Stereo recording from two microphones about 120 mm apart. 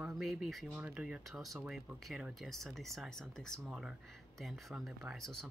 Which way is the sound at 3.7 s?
10° right (ahead or behind).